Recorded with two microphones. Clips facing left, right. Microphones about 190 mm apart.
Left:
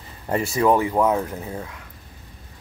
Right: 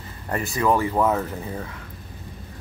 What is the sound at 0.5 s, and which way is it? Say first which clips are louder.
Speech: left 2 dB; 20° left (ahead or behind).